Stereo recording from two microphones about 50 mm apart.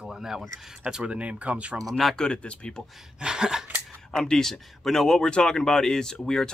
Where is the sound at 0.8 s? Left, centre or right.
Centre.